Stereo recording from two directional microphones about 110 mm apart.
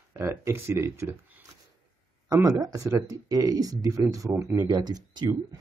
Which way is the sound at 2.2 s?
35° right (ahead or behind).